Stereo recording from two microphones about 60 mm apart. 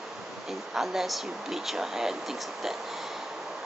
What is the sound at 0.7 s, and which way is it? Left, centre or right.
Speech, centre.